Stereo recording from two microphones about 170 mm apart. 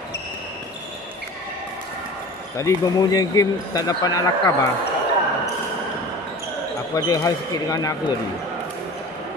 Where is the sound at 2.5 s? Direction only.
20° left (ahead or behind).